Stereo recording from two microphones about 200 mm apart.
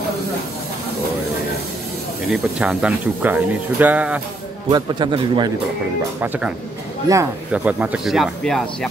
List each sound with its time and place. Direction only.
2.2 s speech: 5° right (ahead or behind)
4.6 s a man's voice: 20° right (ahead or behind)
6.2 s speech: 10° right (ahead or behind)